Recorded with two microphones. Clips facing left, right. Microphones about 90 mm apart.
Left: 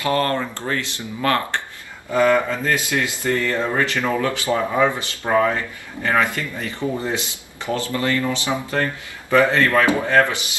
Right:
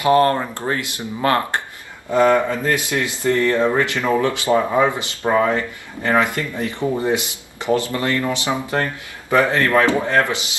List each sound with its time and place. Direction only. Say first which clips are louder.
0.0 s speech: right 5 dB; 25° right (ahead or behind)